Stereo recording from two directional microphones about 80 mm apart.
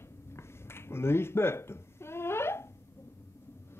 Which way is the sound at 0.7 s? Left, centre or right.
Left.